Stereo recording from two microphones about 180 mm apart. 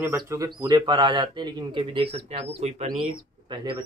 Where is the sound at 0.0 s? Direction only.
15° right (ahead or behind).